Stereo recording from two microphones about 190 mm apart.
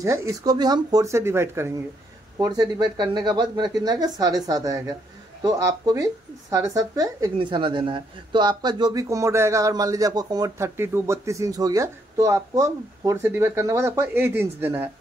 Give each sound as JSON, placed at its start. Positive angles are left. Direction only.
{"t": 0.0, "sound": "a woman's voice", "side_deg": -15}